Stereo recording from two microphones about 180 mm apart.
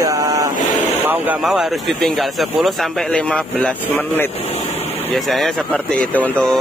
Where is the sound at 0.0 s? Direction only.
20° right (ahead or behind).